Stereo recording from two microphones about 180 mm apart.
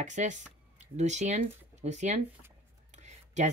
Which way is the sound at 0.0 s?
40° right (ahead or behind).